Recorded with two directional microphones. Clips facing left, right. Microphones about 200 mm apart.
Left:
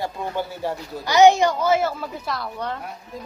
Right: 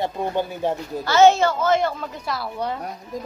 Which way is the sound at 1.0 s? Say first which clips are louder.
Left 1 dB; 15° left (ahead or behind).